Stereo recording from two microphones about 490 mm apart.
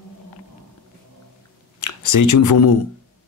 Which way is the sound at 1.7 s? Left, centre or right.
Left.